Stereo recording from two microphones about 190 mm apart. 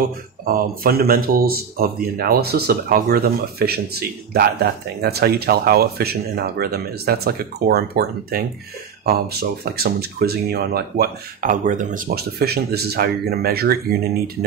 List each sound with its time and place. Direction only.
0.5 s speech: 50° right (ahead or behind)